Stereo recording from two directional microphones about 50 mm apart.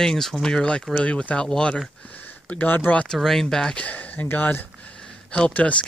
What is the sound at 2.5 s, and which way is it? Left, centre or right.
Speech, left.